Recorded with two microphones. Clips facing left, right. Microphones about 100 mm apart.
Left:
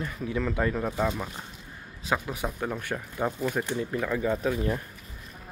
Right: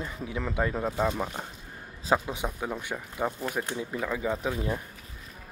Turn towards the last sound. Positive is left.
turn(degrees=-15)  # may be behind; listen again after turning